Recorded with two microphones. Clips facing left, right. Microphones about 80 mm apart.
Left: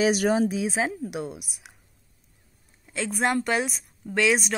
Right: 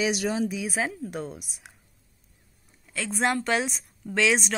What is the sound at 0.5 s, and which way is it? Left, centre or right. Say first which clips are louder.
Speech: left 3 dB; left.